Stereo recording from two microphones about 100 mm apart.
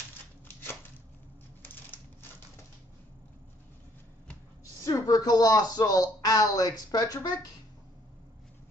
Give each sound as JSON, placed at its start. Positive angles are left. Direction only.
{"t": 4.8, "sound": "speech", "side_deg": 35}